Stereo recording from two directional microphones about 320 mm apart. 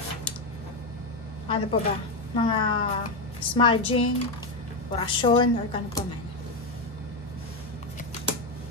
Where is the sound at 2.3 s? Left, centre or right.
Centre.